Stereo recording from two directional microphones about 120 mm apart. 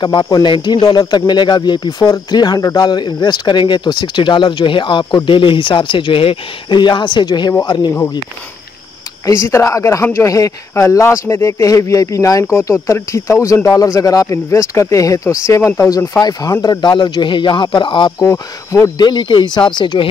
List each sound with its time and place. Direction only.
0.0 s speech: 35° left (ahead or behind)
9.2 s speech: 25° left (ahead or behind); by 18.1 s 40° left (ahead or behind)
18.2 s speech: 25° left (ahead or behind)
18.9 s speech: 40° left (ahead or behind)